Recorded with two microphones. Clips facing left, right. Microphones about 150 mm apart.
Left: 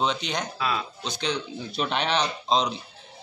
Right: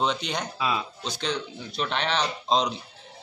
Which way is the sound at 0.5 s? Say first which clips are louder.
Right 1 dB; 15° right (ahead or behind).